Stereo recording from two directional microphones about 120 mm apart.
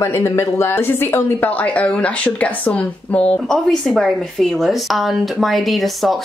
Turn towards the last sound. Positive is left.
turn(degrees=0)  # may be behind; listen again after turning